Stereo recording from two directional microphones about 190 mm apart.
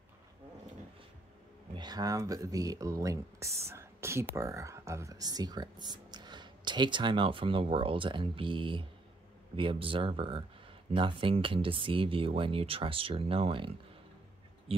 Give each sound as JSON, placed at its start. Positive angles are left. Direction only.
{"t": 1.7, "sound": "speech", "side_deg": -20}